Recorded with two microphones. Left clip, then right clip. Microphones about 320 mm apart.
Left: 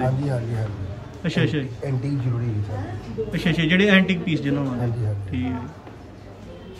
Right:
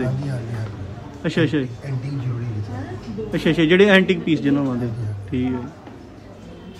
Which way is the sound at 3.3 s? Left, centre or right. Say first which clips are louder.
Right 6 dB; centre.